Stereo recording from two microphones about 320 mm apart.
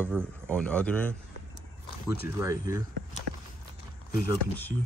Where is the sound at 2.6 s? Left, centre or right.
Left.